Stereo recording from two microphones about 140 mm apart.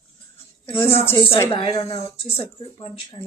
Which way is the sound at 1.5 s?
40° left (ahead or behind).